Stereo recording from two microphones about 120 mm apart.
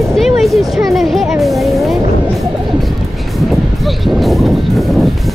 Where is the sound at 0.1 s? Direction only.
Centre (ahead or behind).